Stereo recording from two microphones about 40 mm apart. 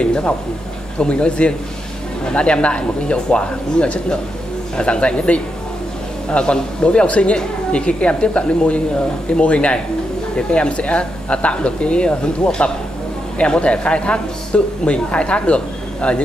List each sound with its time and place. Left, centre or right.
0.0 s speech: left